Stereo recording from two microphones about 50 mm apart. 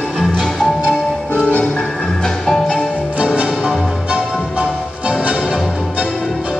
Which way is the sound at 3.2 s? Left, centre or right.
Right.